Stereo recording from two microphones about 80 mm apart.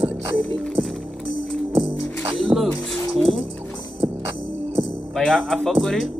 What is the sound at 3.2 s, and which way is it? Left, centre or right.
Speech, centre.